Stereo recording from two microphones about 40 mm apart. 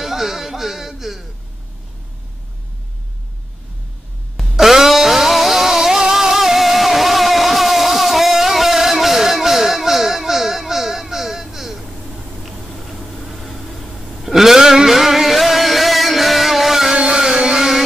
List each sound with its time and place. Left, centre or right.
0.0 s music: centre
4.4 s music: centre
12.4 s a sound: centre
14.2 s music: centre
16.9 s vehicle: right